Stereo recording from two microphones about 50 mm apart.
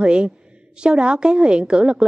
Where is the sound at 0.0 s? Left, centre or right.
Centre.